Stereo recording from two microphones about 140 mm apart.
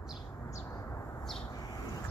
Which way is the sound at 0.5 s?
20° left (ahead or behind).